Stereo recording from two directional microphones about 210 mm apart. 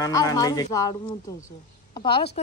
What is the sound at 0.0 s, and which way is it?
Speech, 15° left (ahead or behind).